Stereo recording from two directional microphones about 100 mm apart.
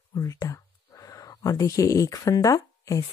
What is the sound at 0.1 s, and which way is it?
Speech, 30° left (ahead or behind).